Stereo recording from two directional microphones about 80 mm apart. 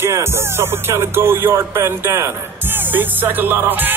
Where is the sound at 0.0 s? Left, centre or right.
Right.